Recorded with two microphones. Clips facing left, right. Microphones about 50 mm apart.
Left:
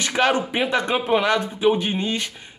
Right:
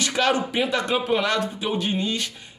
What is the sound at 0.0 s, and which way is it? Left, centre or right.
A woman's voice, left.